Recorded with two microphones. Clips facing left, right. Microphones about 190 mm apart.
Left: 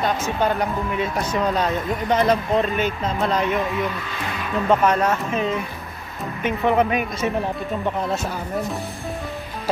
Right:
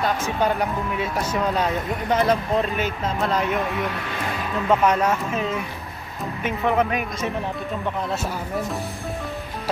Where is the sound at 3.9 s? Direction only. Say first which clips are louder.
Even; 70° right (ahead or behind).